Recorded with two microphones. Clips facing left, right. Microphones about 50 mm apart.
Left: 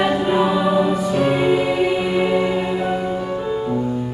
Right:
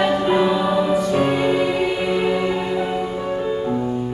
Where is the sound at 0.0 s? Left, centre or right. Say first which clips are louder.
Even; centre.